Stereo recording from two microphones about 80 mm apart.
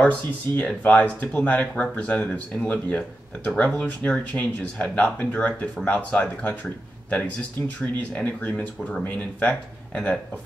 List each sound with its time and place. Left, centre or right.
0.0 s speech: centre